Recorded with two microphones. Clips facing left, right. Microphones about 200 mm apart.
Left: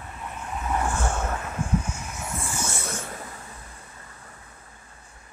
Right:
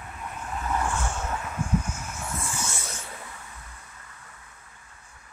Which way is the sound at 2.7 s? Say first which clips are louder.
Left 6 dB; 55° left (ahead or behind).